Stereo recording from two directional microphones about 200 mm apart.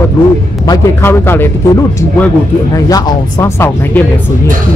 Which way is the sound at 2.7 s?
15° left (ahead or behind).